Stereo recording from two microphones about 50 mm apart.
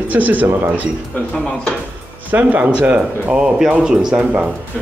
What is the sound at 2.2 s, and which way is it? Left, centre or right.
Speech, right.